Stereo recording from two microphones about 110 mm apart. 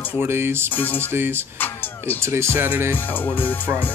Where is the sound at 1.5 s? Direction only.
15° left (ahead or behind).